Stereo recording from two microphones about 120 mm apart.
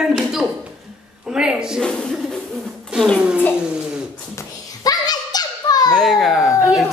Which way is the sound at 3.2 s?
10° right (ahead or behind).